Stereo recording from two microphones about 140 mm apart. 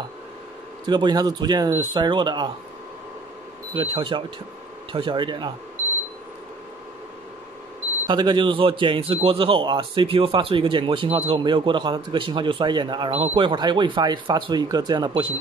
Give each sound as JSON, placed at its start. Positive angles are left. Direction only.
{"t": 0.8, "sound": "a man's voice", "side_deg": -30}
{"t": 3.7, "sound": "a man's voice", "side_deg": -40}
{"t": 8.1, "sound": "a man's voice", "side_deg": -35}